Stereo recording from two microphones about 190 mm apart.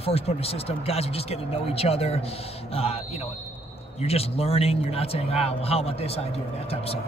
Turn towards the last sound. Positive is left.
turn(degrees=30)  # may be behind; listen again after turning